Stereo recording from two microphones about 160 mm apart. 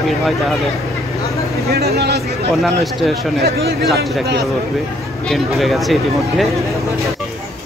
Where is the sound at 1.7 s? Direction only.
75° right (ahead or behind).